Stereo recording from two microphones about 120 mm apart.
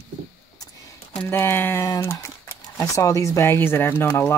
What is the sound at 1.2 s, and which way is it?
Speech, 20° left (ahead or behind).